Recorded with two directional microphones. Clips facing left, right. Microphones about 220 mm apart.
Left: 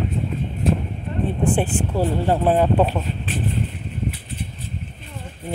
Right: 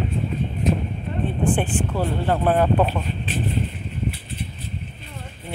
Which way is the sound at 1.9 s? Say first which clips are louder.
Left 4 dB; 10° left (ahead or behind).